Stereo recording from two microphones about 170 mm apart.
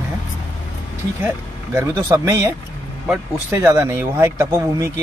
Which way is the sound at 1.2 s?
15° right (ahead or behind).